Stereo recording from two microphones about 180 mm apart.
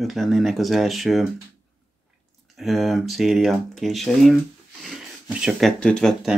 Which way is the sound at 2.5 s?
Centre (ahead or behind).